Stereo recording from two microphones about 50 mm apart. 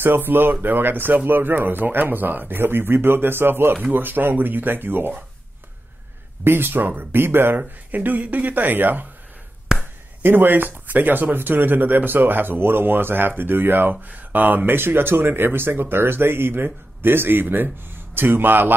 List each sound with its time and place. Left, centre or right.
0.0 s speech: right
6.4 s speech: right
7.5 s speech: right
9.7 s a sound: centre
10.2 s speech: right